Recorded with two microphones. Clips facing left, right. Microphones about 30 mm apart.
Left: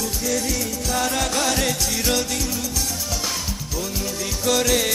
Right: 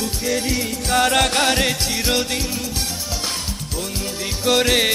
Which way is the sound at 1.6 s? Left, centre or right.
Right.